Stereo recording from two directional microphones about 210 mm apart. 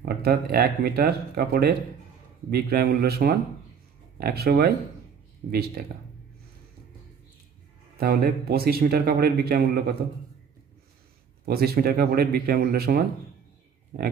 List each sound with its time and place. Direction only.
0.0 s speech: 45° right (ahead or behind)
8.0 s speech: 45° right (ahead or behind)
11.4 s speech: 45° right (ahead or behind)